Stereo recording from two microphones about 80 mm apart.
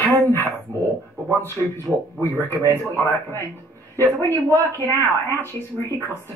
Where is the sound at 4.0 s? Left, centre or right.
Left.